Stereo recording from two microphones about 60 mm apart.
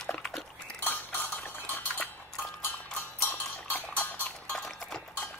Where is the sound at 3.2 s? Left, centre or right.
Left.